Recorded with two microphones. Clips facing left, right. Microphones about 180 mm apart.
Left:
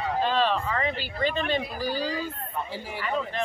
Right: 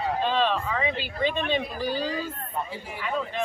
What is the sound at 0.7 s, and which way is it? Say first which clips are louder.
Speech: right 1 dB; 10° right (ahead or behind).